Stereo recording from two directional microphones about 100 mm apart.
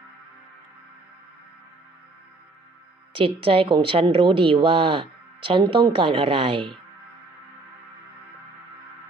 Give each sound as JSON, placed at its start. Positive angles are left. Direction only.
{"t": 3.1, "sound": "speech", "side_deg": -60}